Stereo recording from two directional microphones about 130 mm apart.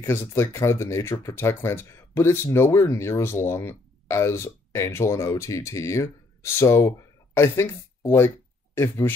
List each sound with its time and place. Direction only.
0.0 s speech: 20° left (ahead or behind)
8.7 s speech: 20° left (ahead or behind)